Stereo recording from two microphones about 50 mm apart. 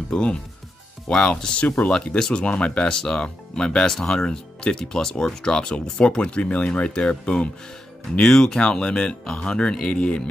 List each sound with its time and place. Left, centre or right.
0.1 s speech: centre
2.4 s speech: left
8.2 s speech: centre